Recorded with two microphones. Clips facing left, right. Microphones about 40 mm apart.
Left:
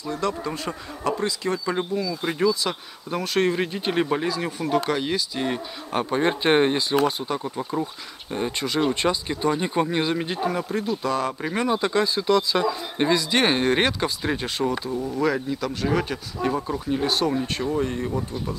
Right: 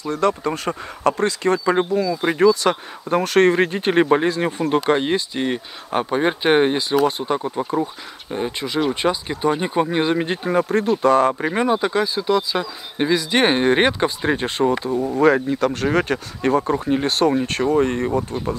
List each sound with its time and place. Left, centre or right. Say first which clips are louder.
0.0 s speech: right 7 dB; right
0.3 s speech: right 6 dB; right
1.0 s speech: right 6 dB; right
5.9 s speech: right 3 dB; centre
7.1 s speech: right 5 dB; right
8.3 s speech: right 2 dB; centre; by 10.7 s right
10.7 s speech: right 8 dB; right
11.5 s speech: right 3 dB; centre
14.7 s speech: right 6 dB; right